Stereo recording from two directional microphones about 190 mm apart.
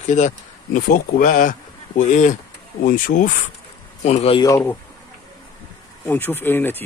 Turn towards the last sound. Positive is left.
turn(degrees=10)  # may be behind; listen again after turning